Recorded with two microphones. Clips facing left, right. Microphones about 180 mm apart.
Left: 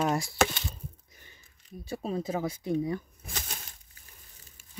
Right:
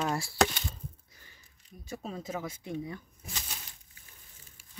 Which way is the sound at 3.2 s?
50° left (ahead or behind).